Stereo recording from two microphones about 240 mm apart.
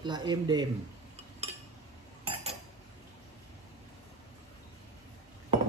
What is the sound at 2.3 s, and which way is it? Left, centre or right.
Cutlery, right.